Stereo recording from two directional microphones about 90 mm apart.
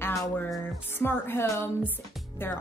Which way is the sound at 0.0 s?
35° left (ahead or behind).